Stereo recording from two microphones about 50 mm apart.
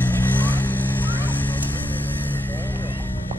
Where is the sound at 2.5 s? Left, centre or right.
Left.